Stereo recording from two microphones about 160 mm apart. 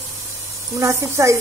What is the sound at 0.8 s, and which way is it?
Speech, 20° right (ahead or behind).